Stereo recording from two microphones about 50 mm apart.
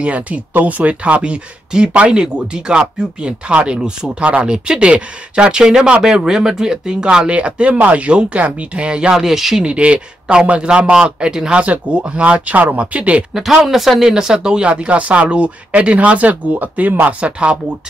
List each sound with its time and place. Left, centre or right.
0.0 s speech: right; by 9.7 s centre
9.7 s speech: right
11.6 s speech: right
13.3 s speech: centre
14.7 s speech: right
17.0 s speech: right